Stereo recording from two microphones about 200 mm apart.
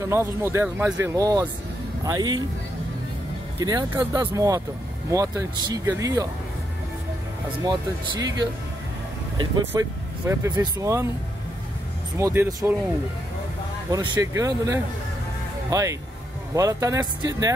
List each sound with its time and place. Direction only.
0.0 s speech: 15° right (ahead or behind)
3.6 s speech: 20° right (ahead or behind)
7.6 s speech: 20° right (ahead or behind)
9.7 s speech: 15° right (ahead or behind)
12.2 s speech: 15° right (ahead or behind)
13.8 s speech: 15° right (ahead or behind)